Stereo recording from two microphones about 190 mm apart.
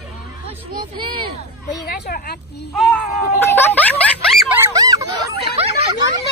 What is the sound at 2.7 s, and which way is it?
Speech, centre (ahead or behind).